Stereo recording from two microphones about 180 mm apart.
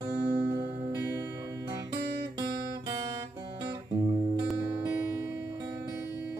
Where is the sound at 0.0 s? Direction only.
20° right (ahead or behind).